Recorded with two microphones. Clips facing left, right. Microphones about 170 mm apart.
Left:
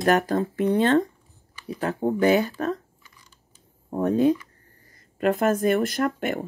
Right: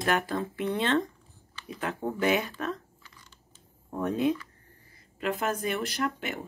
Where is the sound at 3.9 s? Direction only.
35° left (ahead or behind).